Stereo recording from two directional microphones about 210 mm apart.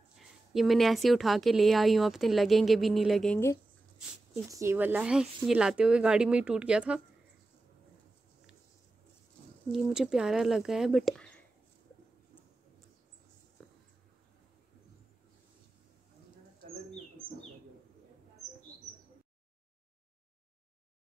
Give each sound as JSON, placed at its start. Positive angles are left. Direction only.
{"t": 0.5, "sound": "speech", "side_deg": 0}
{"t": 4.5, "sound": "speech", "side_deg": -15}
{"t": 9.7, "sound": "speech", "side_deg": 0}
{"t": 13.6, "sound": "a sound", "side_deg": 0}